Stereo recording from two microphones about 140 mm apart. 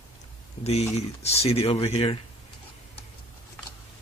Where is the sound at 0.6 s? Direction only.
50° left (ahead or behind).